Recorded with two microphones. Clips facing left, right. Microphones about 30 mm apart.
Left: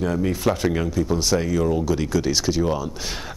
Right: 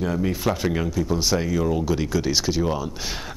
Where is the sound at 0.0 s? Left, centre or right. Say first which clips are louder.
Left 2 dB; centre.